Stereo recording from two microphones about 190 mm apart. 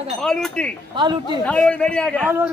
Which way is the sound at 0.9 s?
25° right (ahead or behind).